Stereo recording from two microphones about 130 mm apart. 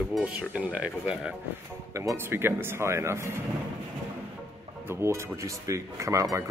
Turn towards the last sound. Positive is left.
turn(degrees=-25)  # may be behind; listen again after turning